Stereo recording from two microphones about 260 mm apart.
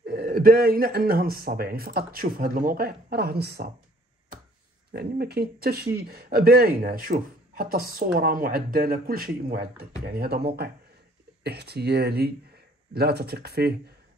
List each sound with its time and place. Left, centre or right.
0.0 s speech: right
4.9 s speech: right